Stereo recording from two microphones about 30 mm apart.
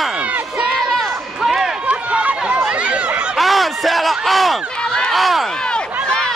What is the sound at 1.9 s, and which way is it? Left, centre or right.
Run, right.